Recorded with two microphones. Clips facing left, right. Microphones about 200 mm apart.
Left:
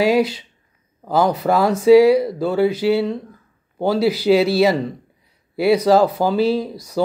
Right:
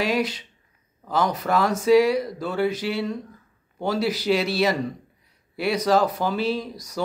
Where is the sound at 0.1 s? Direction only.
30° left (ahead or behind).